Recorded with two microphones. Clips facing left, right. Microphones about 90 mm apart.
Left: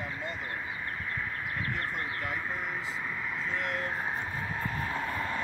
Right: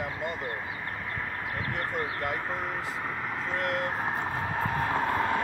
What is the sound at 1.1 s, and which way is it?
Vehicle, 40° right (ahead or behind).